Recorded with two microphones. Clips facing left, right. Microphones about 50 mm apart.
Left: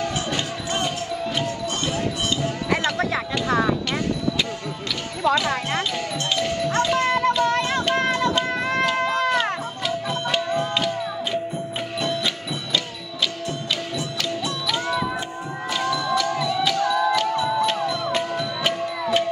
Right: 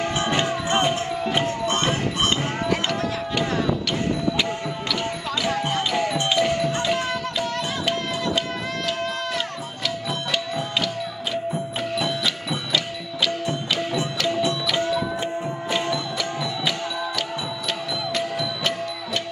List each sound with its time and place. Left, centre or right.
0.3 s music: right
5.5 s basketball bounce: left
5.9 s music: centre
7.4 s music: left
8.4 s music: centre
11.5 s music: centre
13.9 s music: right
15.7 s music: right
18.6 s music: centre